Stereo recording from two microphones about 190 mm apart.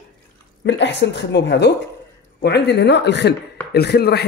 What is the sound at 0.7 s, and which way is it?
Speech, 65° left (ahead or behind).